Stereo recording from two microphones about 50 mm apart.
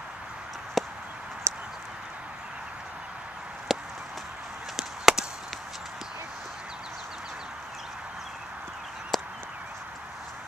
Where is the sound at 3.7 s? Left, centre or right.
Centre.